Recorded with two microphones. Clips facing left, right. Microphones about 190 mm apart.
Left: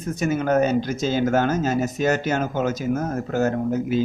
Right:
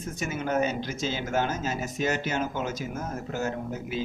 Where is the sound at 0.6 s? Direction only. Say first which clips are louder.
Left 7 dB; 40° left (ahead or behind).